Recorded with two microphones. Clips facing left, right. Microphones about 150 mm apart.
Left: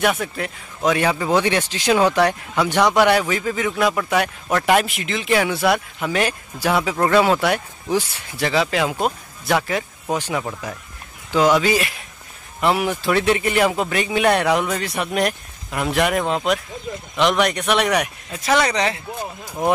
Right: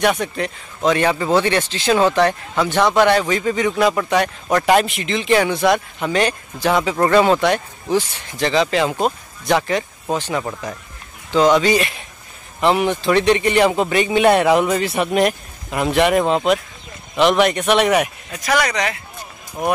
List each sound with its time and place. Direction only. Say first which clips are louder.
0.0 s a man's voice: right 2 dB; 5° left (ahead or behind)
18.3 s speech: left 1 dB; 25° left (ahead or behind)